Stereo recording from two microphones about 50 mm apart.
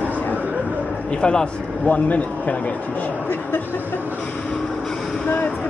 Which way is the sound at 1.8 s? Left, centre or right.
Left.